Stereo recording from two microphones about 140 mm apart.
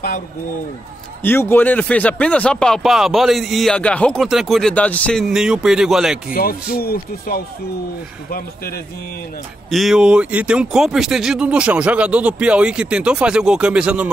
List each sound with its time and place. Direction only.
1.2 s speech: 15° left (ahead or behind)
5.2 s a man's voice: 5° right (ahead or behind)
6.3 s speech: 90° left
9.7 s speech: centre (ahead or behind)